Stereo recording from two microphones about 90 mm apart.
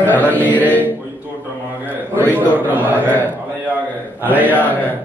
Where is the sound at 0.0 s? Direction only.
20° left (ahead or behind).